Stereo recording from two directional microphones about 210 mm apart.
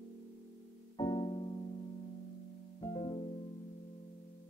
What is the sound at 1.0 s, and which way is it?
Music, 20° left (ahead or behind).